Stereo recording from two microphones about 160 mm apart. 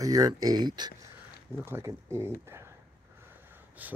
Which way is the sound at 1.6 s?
15° right (ahead or behind).